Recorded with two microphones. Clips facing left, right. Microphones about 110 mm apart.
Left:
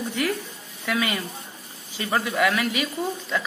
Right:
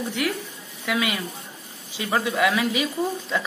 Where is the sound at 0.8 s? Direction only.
10° right (ahead or behind).